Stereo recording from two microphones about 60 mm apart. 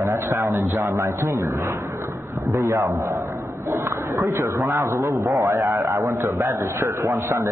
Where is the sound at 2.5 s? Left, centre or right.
Right.